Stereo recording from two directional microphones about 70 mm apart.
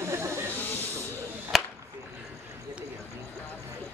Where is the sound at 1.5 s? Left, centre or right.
Centre.